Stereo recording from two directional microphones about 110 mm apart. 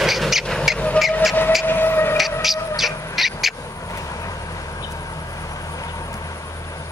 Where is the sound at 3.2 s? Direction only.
Centre (ahead or behind).